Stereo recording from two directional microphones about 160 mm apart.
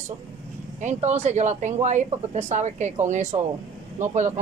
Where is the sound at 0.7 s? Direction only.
45° right (ahead or behind).